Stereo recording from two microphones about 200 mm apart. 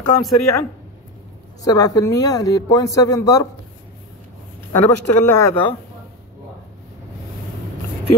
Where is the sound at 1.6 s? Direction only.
20° left (ahead or behind).